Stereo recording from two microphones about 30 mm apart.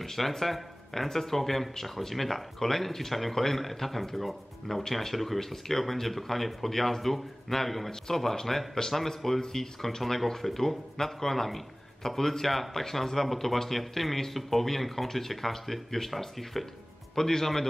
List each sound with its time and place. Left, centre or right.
0.0 s speech: centre
17.1 s speech: centre